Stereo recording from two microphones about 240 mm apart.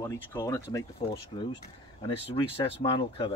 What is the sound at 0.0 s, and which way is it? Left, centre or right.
Speech, centre.